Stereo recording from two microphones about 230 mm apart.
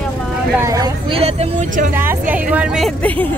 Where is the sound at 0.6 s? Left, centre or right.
Centre.